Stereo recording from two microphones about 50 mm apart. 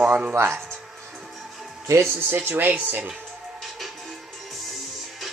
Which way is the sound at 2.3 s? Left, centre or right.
Right.